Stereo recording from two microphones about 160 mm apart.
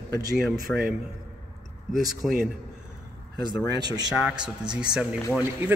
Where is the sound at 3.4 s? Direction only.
25° right (ahead or behind).